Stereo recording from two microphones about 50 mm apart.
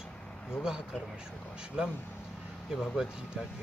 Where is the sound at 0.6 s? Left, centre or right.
Centre.